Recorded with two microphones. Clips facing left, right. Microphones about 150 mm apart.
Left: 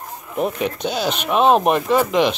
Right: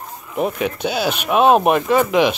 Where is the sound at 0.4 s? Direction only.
5° right (ahead or behind).